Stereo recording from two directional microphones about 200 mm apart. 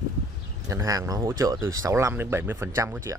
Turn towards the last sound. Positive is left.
turn(degrees=-15)  # may be behind; listen again after turning